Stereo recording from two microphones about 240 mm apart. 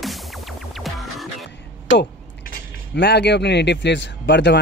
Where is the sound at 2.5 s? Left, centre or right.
Left.